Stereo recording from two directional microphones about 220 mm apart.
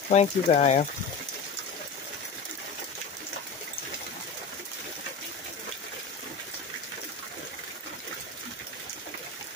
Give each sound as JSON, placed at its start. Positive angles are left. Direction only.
{"t": 0.1, "sound": "speech", "side_deg": 30}